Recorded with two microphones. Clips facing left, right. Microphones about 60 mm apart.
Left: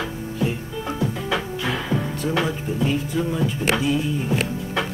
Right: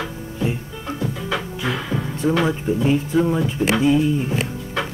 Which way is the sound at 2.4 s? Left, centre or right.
Right.